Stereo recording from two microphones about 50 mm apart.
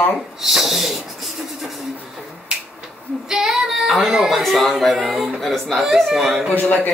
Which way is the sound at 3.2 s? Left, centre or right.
Centre.